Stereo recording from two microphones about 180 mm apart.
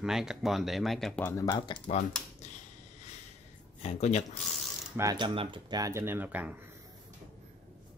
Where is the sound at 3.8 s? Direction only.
35° left (ahead or behind).